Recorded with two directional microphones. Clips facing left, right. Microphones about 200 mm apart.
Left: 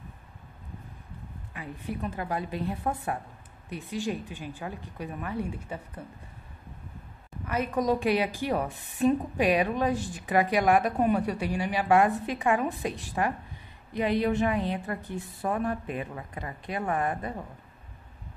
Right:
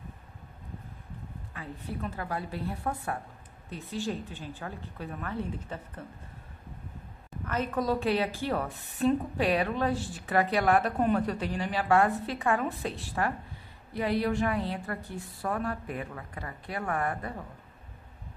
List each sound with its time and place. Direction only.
1.5 s a woman's voice: 15° left (ahead or behind)
7.4 s a woman's voice: 10° left (ahead or behind)